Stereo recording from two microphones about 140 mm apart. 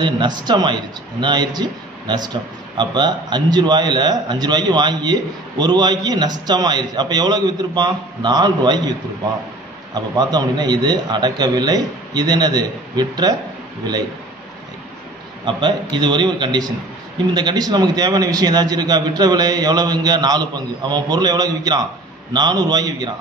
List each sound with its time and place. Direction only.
0.0 s a man's voice: 35° right (ahead or behind)
10.1 s a man's voice: 30° right (ahead or behind)
15.4 s a man's voice: 35° right (ahead or behind)